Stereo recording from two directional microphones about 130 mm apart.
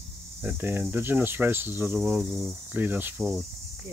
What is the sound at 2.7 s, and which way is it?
Speech, 15° right (ahead or behind).